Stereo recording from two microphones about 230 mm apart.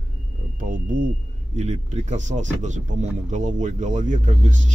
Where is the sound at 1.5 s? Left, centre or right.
Right.